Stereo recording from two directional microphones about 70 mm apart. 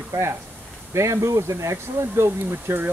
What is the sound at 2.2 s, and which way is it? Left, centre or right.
Speech, right.